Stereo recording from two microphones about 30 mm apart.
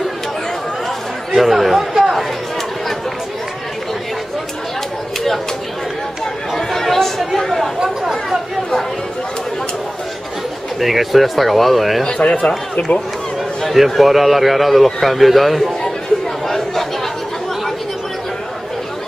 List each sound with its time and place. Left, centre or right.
1.3 s speech: centre
6.5 s chatter: centre
10.8 s speech: centre
12.1 s speech: left
13.7 s speech: centre
16.4 s chatter: centre